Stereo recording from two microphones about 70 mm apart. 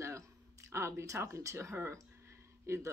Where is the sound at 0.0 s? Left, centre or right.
Right.